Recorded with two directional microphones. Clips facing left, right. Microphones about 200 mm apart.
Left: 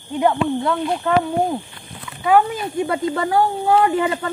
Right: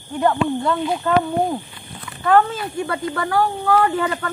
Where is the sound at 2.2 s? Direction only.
10° left (ahead or behind).